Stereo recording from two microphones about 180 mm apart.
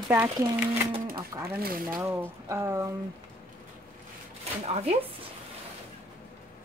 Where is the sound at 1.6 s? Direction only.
55° right (ahead or behind).